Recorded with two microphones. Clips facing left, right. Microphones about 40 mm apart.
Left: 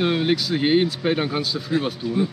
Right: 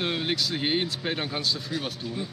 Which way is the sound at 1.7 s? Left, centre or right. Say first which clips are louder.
Left 9 dB; left.